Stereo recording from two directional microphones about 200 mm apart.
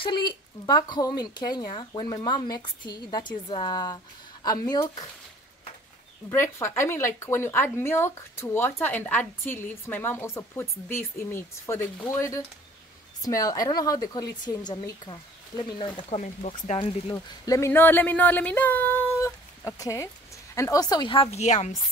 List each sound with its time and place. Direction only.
0.0 s speech: 25° left (ahead or behind)
6.3 s a woman's voice: 10° left (ahead or behind)
16.2 s speech: 35° left (ahead or behind)